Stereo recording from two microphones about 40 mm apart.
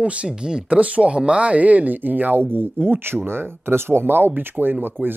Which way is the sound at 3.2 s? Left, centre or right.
Right.